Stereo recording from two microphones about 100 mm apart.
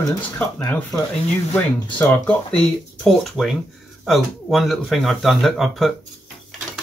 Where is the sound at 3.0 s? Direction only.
Centre (ahead or behind).